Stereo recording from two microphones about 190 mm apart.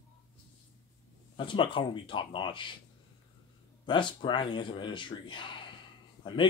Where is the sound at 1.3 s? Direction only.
25° left (ahead or behind).